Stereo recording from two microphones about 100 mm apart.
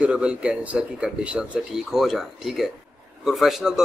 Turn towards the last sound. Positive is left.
turn(degrees=-5)  # may be behind; listen again after turning